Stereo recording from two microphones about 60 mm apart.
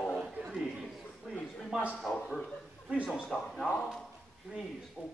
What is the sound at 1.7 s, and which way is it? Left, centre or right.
Speech, centre.